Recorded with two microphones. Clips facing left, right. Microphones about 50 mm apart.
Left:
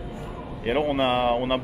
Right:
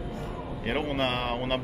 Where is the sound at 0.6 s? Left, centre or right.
Centre.